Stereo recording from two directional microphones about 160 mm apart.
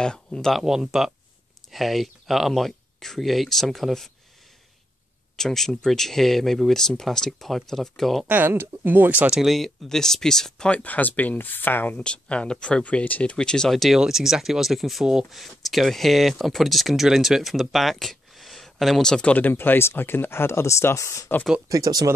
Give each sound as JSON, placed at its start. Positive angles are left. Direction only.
{"t": 0.0, "sound": "speech", "side_deg": 5}
{"t": 5.3, "sound": "speech", "side_deg": 0}
{"t": 8.3, "sound": "speech", "side_deg": -15}
{"t": 21.6, "sound": "speech", "side_deg": -20}